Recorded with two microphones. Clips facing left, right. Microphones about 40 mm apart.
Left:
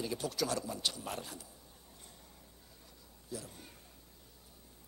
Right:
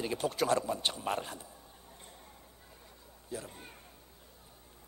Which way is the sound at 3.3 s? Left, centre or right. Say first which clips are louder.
Right 3 dB; right.